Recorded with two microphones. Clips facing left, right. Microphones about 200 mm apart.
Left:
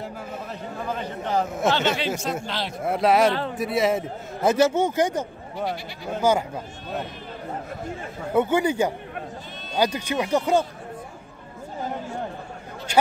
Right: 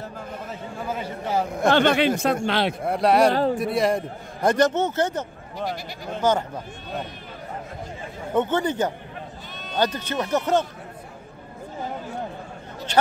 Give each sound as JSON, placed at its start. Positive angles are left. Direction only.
{"t": 0.8, "sound": "a man's voice", "side_deg": -10}
{"t": 1.7, "sound": "speech", "side_deg": -55}
{"t": 2.8, "sound": "speech", "side_deg": 0}
{"t": 3.3, "sound": "speech", "side_deg": -35}
{"t": 3.5, "sound": "a man's voice", "side_deg": 0}
{"t": 8.3, "sound": "a man's voice", "side_deg": 10}